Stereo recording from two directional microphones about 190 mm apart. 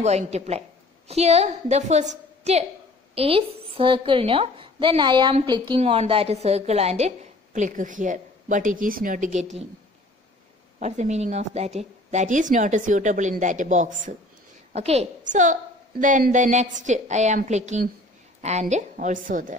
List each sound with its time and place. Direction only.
0.0 s a woman's voice: 35° right (ahead or behind)
10.8 s a woman's voice: 40° right (ahead or behind)